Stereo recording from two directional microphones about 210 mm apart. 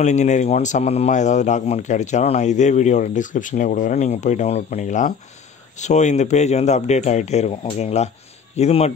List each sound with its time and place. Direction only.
0.0 s speech: 35° left (ahead or behind)